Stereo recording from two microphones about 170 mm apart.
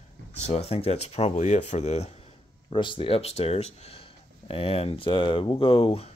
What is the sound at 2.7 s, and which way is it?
Speech, 30° left (ahead or behind).